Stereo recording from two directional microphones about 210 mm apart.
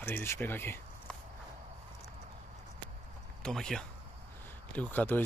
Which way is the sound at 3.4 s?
Centre (ahead or behind).